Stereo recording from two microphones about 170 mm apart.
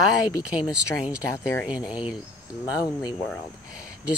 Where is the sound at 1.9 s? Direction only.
5° right (ahead or behind).